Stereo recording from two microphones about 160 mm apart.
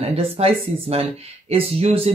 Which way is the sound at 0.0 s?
40° right (ahead or behind).